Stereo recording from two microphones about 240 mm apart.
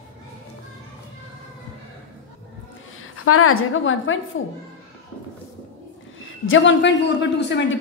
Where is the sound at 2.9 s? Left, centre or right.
Left.